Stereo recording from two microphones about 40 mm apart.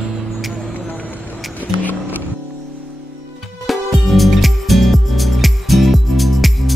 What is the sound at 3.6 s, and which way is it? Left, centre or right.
Music, centre.